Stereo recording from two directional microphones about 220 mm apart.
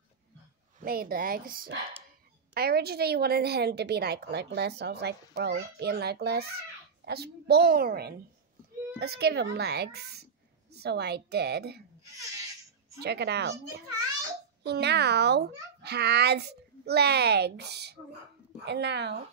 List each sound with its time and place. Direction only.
0.7 s a woman's voice: 40° right (ahead or behind)
13.0 s a woman's voice: 50° right (ahead or behind)